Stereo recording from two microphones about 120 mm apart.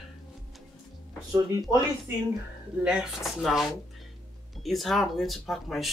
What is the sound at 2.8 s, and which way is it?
Speech, 5° right (ahead or behind).